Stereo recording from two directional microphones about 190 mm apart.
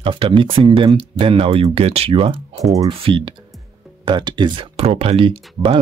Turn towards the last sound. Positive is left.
turn(degrees=-25)  # may be behind; listen again after turning